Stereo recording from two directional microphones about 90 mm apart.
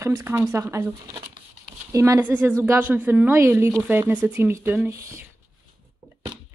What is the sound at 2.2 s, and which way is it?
A woman's voice, 20° right (ahead or behind).